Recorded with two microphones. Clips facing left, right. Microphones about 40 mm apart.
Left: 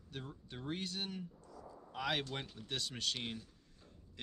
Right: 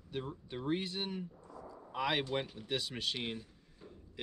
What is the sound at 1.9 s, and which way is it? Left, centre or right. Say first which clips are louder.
Speech: right 4 dB; centre.